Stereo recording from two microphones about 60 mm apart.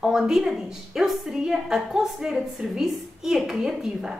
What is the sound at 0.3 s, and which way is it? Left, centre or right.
A woman's voice, centre.